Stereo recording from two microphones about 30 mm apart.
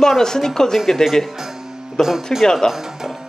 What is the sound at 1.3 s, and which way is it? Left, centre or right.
Music, centre.